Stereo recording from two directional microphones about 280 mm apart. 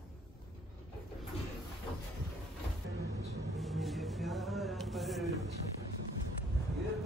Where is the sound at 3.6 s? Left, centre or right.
Centre.